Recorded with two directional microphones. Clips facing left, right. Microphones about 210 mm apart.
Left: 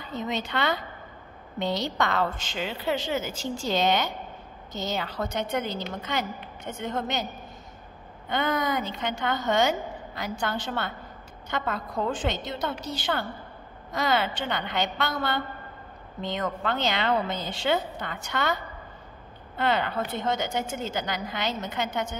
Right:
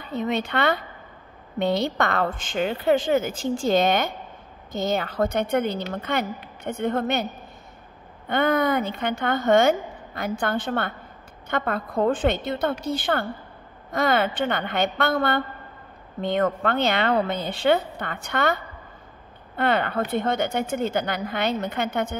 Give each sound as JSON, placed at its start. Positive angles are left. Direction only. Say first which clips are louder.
{"t": 0.0, "sound": "a woman's voice", "louder": "right 5 dB", "side_deg": -60}
{"t": 8.3, "sound": "a woman's voice", "louder": "right 6 dB", "side_deg": -55}